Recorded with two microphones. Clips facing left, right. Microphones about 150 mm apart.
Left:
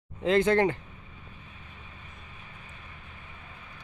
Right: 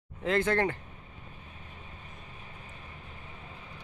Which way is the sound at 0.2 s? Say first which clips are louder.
Left 5 dB; 20° left (ahead or behind).